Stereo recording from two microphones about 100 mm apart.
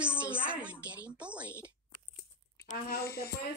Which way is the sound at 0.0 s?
10° right (ahead or behind).